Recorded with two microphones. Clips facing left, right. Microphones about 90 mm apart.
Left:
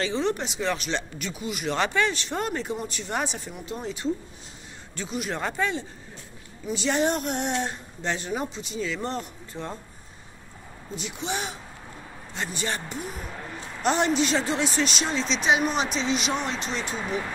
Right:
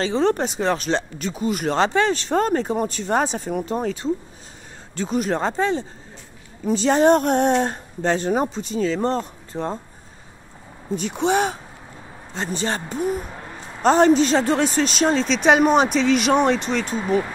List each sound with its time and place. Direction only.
0.0 s speech: 40° right (ahead or behind)
1.8 s speech: 30° right (ahead or behind)
3.5 s speech: 50° right (ahead or behind); by 9.8 s 30° right (ahead or behind)
11.0 s speech: 50° right (ahead or behind)
12.4 s speech: 30° right (ahead or behind); by 16.9 s 50° right (ahead or behind)